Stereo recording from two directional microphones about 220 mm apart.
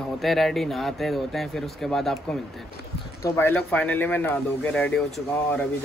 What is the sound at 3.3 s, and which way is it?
Speech, 10° left (ahead or behind).